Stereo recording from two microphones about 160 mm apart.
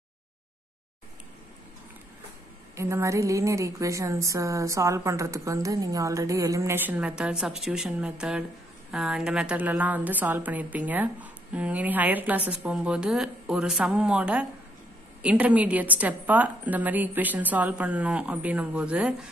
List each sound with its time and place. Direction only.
2.7 s a woman's voice: 15° right (ahead or behind)